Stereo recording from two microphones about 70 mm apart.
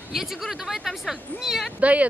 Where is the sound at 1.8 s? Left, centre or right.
Centre.